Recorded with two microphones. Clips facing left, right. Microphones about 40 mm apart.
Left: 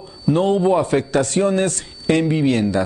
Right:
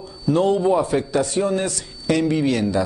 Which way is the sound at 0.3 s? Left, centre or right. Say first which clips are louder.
Left 1 dB; left.